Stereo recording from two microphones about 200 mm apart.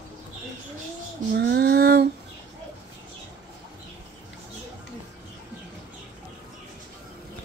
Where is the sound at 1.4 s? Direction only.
55° right (ahead or behind).